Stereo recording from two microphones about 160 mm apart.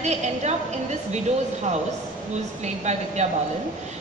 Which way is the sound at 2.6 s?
45° right (ahead or behind).